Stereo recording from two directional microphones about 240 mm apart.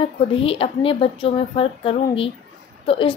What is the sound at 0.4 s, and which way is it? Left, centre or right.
Speech, left.